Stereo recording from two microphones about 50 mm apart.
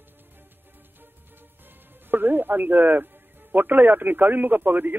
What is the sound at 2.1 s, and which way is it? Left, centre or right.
Speech, right.